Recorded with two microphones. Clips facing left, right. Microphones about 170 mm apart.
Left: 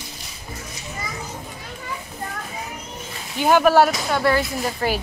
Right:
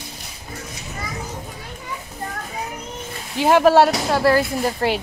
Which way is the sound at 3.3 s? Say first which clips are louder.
Right 2 dB; 30° right (ahead or behind).